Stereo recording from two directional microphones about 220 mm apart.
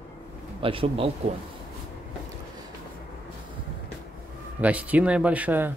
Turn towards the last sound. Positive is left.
turn(degrees=-5)  # may be behind; listen again after turning